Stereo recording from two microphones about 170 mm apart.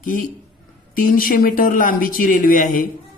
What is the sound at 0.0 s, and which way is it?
Speech, 55° left (ahead or behind).